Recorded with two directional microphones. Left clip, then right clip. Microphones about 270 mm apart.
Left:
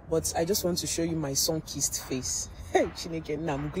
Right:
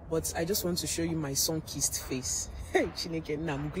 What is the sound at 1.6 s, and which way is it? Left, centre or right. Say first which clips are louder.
Speech: left 2 dB; left.